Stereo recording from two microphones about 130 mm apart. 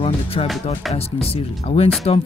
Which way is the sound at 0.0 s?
45° left (ahead or behind).